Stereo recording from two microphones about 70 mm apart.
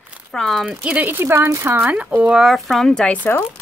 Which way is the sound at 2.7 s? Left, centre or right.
Centre.